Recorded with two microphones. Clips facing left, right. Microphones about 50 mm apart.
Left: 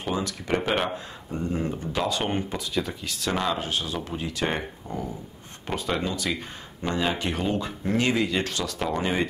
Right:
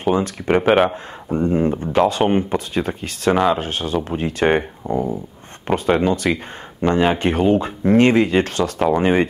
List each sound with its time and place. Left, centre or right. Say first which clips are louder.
0.0 s speech: right 10 dB; right
0.6 s speech: right 11 dB; centre
0.8 s speech: right 8 dB; right